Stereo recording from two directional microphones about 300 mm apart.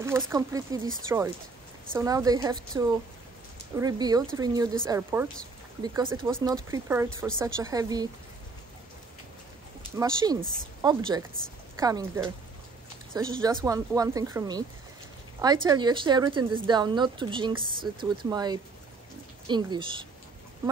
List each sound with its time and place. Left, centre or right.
0.0 s a woman's voice: centre
9.9 s a woman's voice: centre